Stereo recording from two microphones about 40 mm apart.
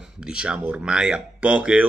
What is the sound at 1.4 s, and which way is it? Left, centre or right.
Speech, right.